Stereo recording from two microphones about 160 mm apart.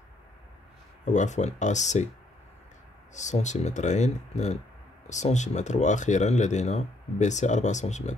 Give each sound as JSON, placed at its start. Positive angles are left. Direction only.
{"t": 1.0, "sound": "speech", "side_deg": 50}
{"t": 3.2, "sound": "speech", "side_deg": 50}